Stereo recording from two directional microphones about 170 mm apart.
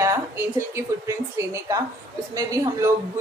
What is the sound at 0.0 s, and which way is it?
A woman's voice, 15° right (ahead or behind).